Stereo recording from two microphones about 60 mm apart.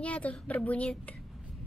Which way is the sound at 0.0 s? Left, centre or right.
Left.